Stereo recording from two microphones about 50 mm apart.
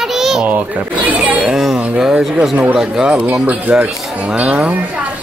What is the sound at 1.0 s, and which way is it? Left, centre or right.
Chatter, right.